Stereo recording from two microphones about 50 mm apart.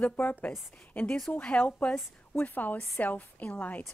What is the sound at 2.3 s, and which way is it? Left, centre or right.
A woman's voice, left.